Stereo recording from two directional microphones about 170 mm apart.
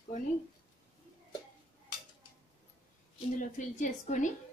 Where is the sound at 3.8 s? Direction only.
45° left (ahead or behind).